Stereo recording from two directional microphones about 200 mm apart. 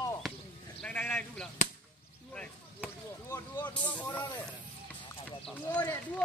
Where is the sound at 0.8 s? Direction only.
10° left (ahead or behind).